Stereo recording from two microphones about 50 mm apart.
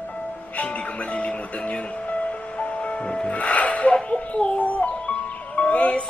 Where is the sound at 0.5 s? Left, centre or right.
Left.